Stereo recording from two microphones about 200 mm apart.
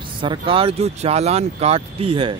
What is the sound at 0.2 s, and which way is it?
Speech, 25° right (ahead or behind).